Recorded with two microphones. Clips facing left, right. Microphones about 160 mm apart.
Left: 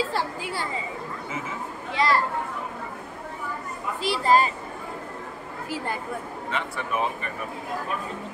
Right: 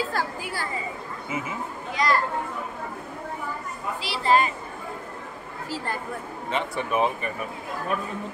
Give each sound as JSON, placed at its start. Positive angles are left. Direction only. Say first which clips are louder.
{"t": 0.1, "sound": "a woman's voice", "louder": "left 1 dB", "side_deg": 25}
{"t": 2.0, "sound": "a woman's voice", "louder": "left 1 dB", "side_deg": 30}
{"t": 4.0, "sound": "speech", "louder": "left 1 dB", "side_deg": 45}
{"t": 6.5, "sound": "speech", "louder": "right 4 dB", "side_deg": -20}